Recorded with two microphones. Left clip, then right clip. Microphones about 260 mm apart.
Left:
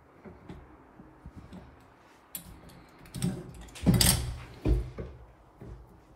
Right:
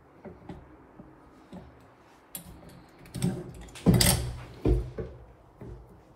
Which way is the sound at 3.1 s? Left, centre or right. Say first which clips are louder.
Right 3 dB; centre.